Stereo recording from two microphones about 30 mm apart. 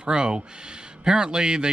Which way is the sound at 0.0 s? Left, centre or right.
Right.